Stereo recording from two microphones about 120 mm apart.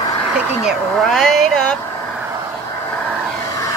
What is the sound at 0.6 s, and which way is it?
Speech, centre (ahead or behind).